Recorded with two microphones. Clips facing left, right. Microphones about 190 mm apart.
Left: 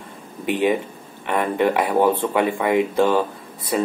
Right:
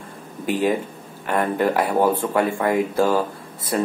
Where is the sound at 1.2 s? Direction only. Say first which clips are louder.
Left 1 dB; centre (ahead or behind).